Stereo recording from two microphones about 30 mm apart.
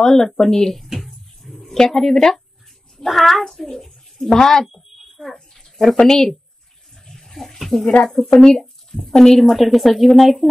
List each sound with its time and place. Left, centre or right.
0.0 s a child's voice: centre
0.9 s a sound: centre
1.6 s speech: centre
3.1 s a child's voice: centre
5.2 s a sound: centre
5.9 s a child's voice: centre
7.1 s a sound: centre
8.4 s speech: left
9.1 s a child's voice: centre
9.4 s speech: centre